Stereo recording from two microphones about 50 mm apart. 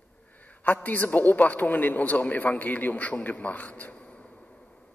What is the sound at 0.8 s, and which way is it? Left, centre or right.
A man's voice, left.